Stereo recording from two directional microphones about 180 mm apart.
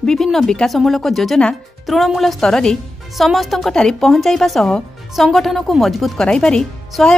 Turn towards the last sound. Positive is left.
turn(degrees=5)  # may be behind; listen again after turning